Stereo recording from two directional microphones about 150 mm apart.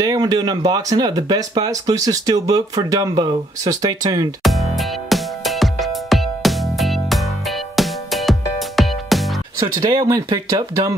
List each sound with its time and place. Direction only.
0.0 s speech: 25° right (ahead or behind)
4.4 s music: centre (ahead or behind)
9.6 s speech: 25° right (ahead or behind)